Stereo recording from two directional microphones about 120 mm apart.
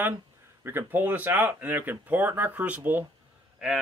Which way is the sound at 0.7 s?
15° right (ahead or behind).